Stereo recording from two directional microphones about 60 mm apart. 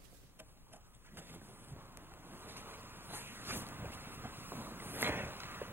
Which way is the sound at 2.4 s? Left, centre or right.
Right.